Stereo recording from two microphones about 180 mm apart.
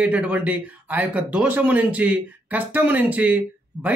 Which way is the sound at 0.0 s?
5° right (ahead or behind).